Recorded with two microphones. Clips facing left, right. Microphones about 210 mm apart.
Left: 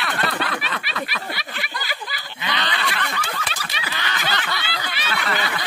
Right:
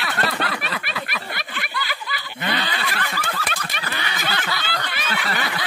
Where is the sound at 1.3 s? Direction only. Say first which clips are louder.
Left 1 dB; 50° right (ahead or behind).